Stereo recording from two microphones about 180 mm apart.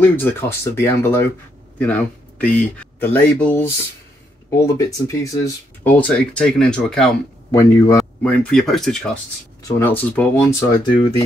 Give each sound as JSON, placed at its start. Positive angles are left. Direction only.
{"t": 0.0, "sound": "speech", "side_deg": 10}
{"t": 5.9, "sound": "speech", "side_deg": 5}
{"t": 7.5, "sound": "speech", "side_deg": 15}
{"t": 9.6, "sound": "speech", "side_deg": 15}